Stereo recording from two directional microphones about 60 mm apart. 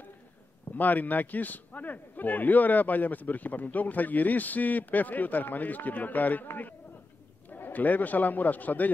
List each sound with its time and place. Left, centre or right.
0.7 s a man's voice: left